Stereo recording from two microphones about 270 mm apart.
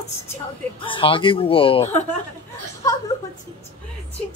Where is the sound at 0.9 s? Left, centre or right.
Centre.